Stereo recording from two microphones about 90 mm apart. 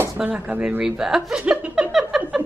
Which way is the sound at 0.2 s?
15° right (ahead or behind).